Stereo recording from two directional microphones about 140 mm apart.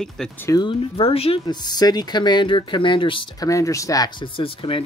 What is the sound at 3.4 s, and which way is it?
Speech, 25° left (ahead or behind).